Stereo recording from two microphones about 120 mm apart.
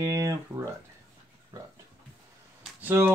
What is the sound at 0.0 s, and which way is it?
Speech, 30° right (ahead or behind).